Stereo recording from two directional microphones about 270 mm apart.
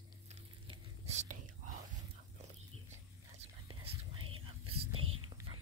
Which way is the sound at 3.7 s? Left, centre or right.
Centre.